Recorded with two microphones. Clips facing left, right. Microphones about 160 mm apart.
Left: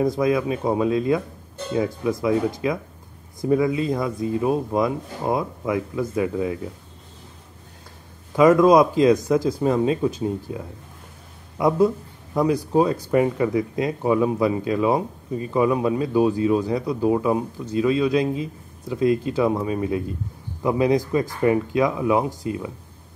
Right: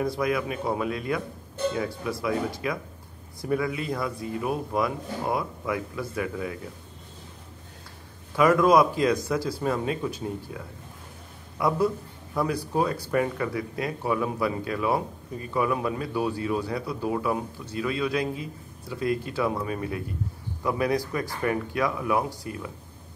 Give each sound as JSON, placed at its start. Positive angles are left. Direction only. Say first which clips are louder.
{"t": 0.0, "sound": "speech", "louder": "left 6 dB", "side_deg": 20}
{"t": 2.2, "sound": "speech", "louder": "left 6 dB", "side_deg": 20}
{"t": 8.4, "sound": "speech", "louder": "left 5 dB", "side_deg": 20}